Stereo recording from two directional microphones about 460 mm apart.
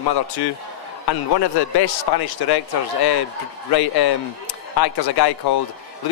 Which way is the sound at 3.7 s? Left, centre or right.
Left.